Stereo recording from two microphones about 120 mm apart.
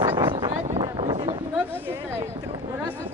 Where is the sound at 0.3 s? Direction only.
40° right (ahead or behind).